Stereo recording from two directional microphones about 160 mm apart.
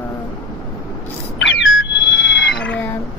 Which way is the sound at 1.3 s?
90° left.